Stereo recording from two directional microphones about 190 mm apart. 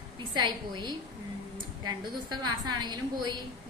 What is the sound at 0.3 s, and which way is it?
Speech, 25° right (ahead or behind).